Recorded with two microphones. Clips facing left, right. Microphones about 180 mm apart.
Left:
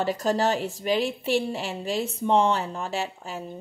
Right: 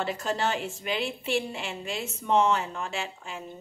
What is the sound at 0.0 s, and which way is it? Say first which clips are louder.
A woman's voice: left 5 dB; 40° left (ahead or behind).